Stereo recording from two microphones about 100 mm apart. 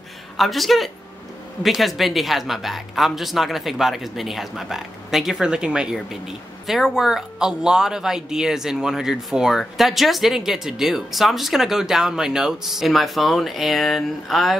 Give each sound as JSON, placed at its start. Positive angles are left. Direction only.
{"t": 0.4, "sound": "speech", "side_deg": 0}